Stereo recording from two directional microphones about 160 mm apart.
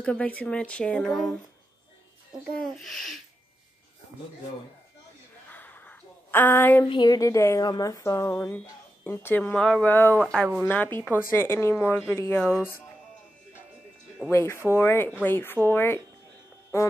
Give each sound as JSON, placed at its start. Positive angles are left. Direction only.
{"t": 0.0, "sound": "speech", "side_deg": 10}
{"t": 2.5, "sound": "speech", "side_deg": 0}
{"t": 5.5, "sound": "a sound", "side_deg": 10}
{"t": 6.9, "sound": "speech", "side_deg": 25}
{"t": 14.3, "sound": "speech", "side_deg": 15}